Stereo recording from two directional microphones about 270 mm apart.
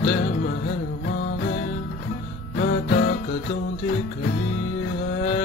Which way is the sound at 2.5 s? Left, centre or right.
Left.